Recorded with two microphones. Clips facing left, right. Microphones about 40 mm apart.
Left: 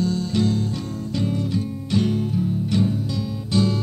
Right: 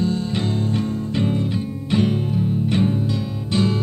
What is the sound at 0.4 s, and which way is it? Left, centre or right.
Music, right.